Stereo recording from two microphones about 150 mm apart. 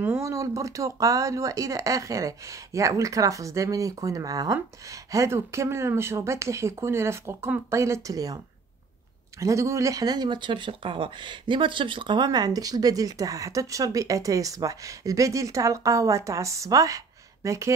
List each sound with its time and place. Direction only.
0.0 s speech: 20° right (ahead or behind)
9.4 s speech: 20° right (ahead or behind)